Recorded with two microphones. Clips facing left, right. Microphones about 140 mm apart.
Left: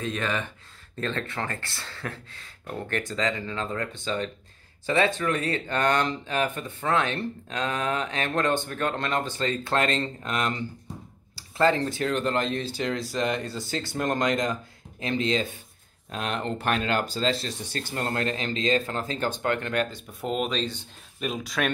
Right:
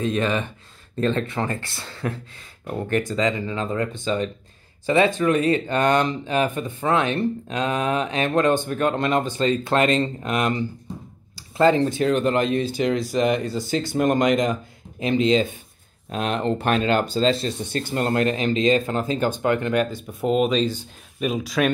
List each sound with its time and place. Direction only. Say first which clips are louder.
0.0 s speech: right 6 dB; 20° right (ahead or behind); by 21.7 s 5° right (ahead or behind)